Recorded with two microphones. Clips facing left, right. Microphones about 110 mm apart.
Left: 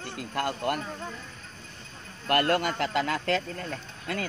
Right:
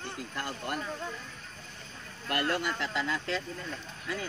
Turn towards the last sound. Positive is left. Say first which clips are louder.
# left 4 dB
turn(degrees=65)  # may be behind; listen again after turning